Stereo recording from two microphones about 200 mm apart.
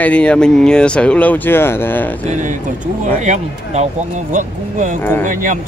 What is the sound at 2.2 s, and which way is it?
Speech, 40° right (ahead or behind).